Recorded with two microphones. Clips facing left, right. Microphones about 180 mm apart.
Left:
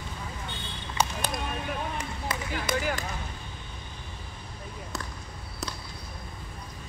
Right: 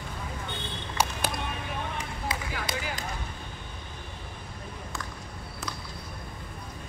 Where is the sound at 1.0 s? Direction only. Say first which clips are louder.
Even; 10° right (ahead or behind).